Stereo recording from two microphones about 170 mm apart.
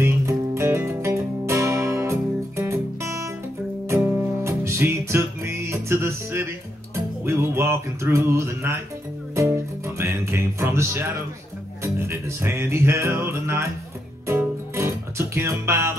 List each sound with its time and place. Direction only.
0.0 s music: 15° right (ahead or behind)
7.2 s speech: 15° right (ahead or behind)
9.3 s music: 15° right (ahead or behind)